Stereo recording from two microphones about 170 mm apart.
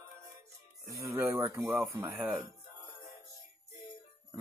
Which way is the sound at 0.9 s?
15° right (ahead or behind).